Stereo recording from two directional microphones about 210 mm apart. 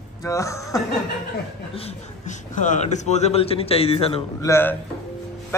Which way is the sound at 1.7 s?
30° left (ahead or behind).